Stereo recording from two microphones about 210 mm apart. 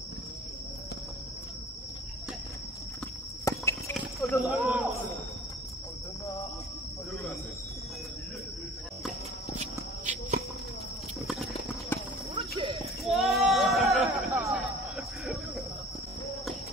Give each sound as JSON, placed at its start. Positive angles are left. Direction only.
{"t": 3.4, "sound": "clip-clop", "side_deg": 15}
{"t": 4.2, "sound": "speech", "side_deg": 0}
{"t": 9.6, "sound": "shuffle", "side_deg": -35}
{"t": 11.9, "sound": "clip-clop", "side_deg": 10}
{"t": 12.4, "sound": "a sound", "side_deg": -25}
{"t": 13.0, "sound": "sheep", "side_deg": 0}
{"t": 14.4, "sound": "music", "side_deg": 0}